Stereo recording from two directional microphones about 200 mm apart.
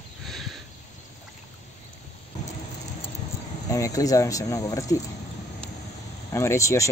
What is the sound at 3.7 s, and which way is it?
Speech, 15° left (ahead or behind).